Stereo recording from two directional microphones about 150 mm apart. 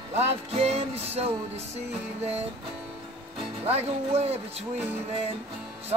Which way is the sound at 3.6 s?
45° right (ahead or behind).